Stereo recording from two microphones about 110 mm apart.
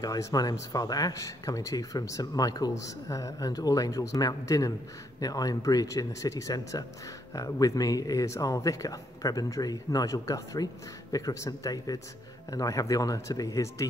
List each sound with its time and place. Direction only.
0.0 s speech: 35° left (ahead or behind)